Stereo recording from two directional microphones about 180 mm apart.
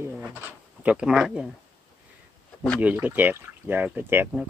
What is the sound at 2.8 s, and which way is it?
Speech, 10° right (ahead or behind).